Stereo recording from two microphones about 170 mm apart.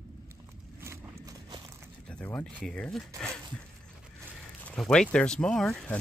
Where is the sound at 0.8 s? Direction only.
15° right (ahead or behind).